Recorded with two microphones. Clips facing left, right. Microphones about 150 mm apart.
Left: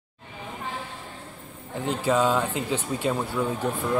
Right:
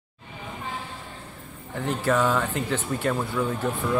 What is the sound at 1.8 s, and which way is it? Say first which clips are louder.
Speech: even; 20° left (ahead or behind).